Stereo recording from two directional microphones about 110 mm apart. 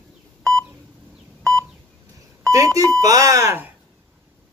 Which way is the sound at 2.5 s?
30° right (ahead or behind).